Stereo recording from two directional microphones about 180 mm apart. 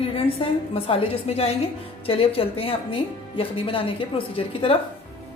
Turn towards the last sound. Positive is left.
turn(degrees=30)  # may be behind; listen again after turning